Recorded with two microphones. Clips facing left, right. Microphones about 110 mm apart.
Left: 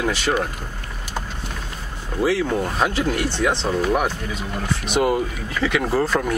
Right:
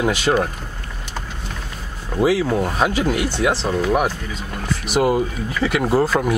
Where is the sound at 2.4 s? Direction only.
5° right (ahead or behind).